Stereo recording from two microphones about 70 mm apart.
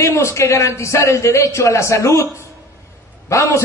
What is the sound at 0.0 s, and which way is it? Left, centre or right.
A man's voice, left.